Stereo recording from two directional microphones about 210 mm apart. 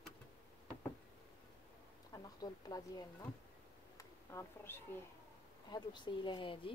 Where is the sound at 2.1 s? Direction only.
15° left (ahead or behind).